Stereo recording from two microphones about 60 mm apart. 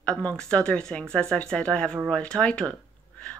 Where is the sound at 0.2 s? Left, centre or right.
Centre.